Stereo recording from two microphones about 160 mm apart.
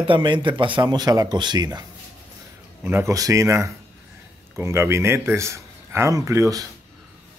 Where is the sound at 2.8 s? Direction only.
10° right (ahead or behind).